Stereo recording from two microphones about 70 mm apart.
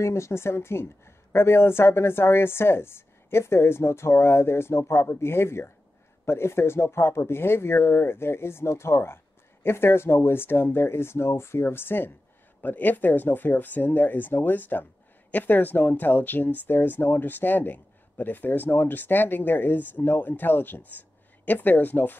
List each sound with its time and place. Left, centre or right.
0.0 s speech: left